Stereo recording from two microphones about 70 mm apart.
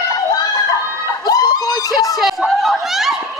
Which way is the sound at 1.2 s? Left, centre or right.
Left.